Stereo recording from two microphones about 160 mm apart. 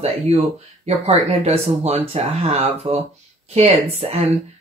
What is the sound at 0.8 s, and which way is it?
Speech, 40° right (ahead or behind).